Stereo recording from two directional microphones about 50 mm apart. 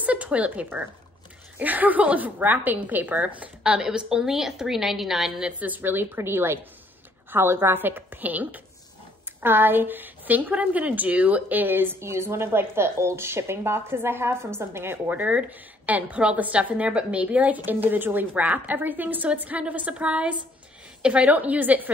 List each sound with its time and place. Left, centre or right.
0.0 s a woman's voice: right
3.6 s a woman's voice: centre
5.6 s a woman's voice: right
15.0 s a woman's voice: right
17.6 s a woman's voice: right